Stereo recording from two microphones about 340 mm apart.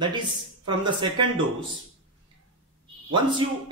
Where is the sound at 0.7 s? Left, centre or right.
Centre.